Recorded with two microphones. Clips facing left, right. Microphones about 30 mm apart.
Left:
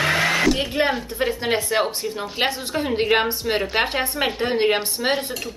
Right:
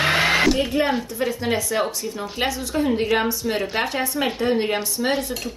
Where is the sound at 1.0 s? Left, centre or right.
Left.